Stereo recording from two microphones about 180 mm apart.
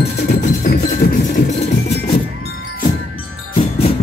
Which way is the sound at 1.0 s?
60° left (ahead or behind).